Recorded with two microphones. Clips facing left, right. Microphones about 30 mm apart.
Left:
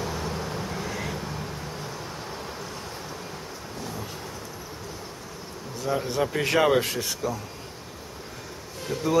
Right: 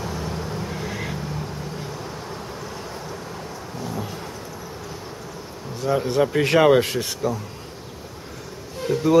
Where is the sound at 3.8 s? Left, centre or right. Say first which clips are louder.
Right 6 dB; centre.